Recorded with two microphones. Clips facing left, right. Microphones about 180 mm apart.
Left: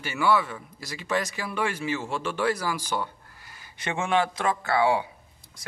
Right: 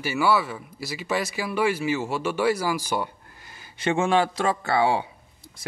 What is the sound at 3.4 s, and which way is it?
Speech, 25° right (ahead or behind).